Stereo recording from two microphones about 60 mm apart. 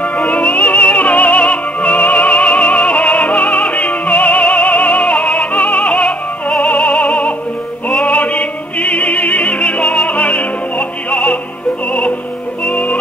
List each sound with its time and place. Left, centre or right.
0.2 s music: centre
12.6 s music: centre